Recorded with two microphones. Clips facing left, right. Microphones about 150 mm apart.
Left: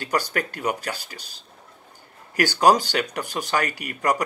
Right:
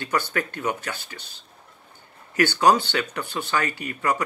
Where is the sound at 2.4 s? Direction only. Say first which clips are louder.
Left 1 dB; 40° left (ahead or behind).